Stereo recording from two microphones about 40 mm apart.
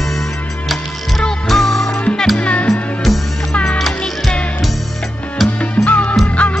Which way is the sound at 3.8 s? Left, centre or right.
Centre.